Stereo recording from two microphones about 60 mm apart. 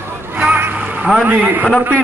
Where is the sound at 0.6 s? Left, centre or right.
Right.